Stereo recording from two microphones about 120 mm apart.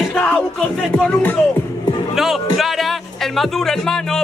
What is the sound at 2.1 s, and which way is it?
Speech, centre (ahead or behind).